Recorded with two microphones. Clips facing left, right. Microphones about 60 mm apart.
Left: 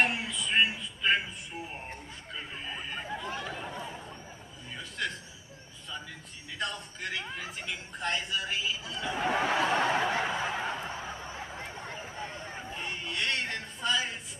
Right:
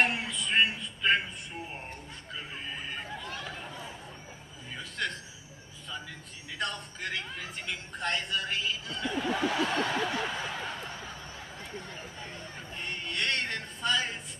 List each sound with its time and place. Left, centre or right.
0.0 s a man's voice: centre
6.6 s a man's voice: centre
9.2 s snicker: left
12.7 s a sound: centre